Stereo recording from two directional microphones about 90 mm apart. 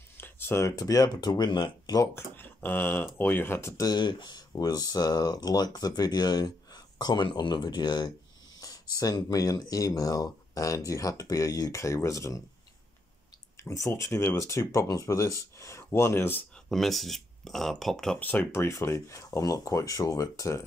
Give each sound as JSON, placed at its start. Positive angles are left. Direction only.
{"t": 0.2, "sound": "speech", "side_deg": 25}
{"t": 2.1, "sound": "speech", "side_deg": 20}
{"t": 3.7, "sound": "speech", "side_deg": 50}
{"t": 8.5, "sound": "speech", "side_deg": 45}
{"t": 13.6, "sound": "speech", "side_deg": 35}
{"t": 16.6, "sound": "speech", "side_deg": 5}
{"t": 18.2, "sound": "speech", "side_deg": 20}
{"t": 18.5, "sound": "speech", "side_deg": 30}